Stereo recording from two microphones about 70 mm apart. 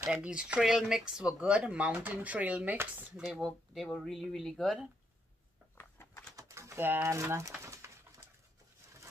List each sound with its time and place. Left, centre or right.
0.0 s speech: right
0.3 s speech: centre
3.2 s speech: centre
5.8 s a sound: left
6.3 s typing: right
7.0 s pigeon: right